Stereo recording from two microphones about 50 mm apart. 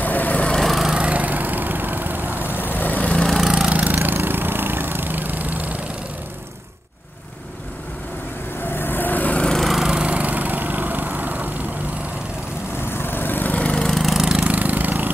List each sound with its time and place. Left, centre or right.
0.0 s lawn mower: left
0.6 s lawn mower: centre
0.9 s lawn mower: right
2.6 s vehicle: left
3.3 s lawn mower: centre
3.6 s lawn mower: right
8.7 s vehicle: left
9.6 s lawn mower: centre
9.8 s lawn mower: right
11.1 s vehicle: right
12.8 s vehicle: left
13.7 s lawn mower: centre
14.4 s vehicle: right